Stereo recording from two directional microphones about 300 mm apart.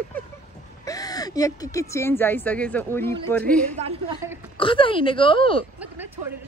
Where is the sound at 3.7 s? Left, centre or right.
Centre.